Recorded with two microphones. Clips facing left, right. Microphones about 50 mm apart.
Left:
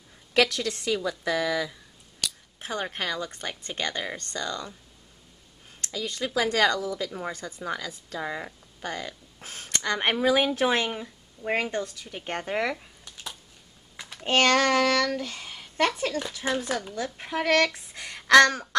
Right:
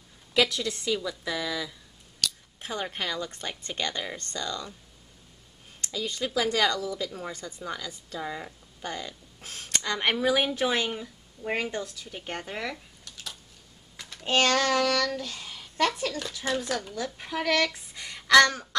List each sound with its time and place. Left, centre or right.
0.3 s a woman's voice: left
2.1 s a sound: centre
2.8 s speech: centre
3.2 s a woman's voice: left
5.9 s a woman's voice: left
7.3 s a woman's voice: left
10.9 s a woman's voice: centre
12.4 s a sound: left
13.9 s typing: centre
14.2 s speech: left
15.1 s a sound: left
16.0 s a woman's voice: left
17.7 s a sound: left